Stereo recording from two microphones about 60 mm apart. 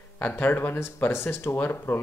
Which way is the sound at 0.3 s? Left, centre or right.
Left.